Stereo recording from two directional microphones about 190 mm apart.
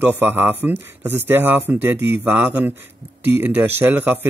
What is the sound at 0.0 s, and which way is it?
Speech, 10° right (ahead or behind).